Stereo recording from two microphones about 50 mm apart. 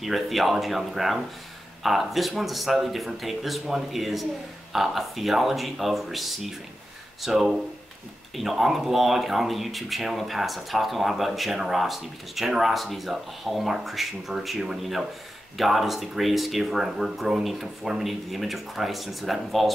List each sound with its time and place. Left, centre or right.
0.0 s speech: centre